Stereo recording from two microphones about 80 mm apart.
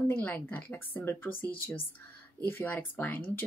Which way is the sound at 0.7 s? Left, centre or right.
Left.